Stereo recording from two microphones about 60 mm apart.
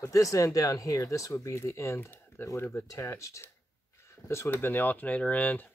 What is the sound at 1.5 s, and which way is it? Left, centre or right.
Speech, left.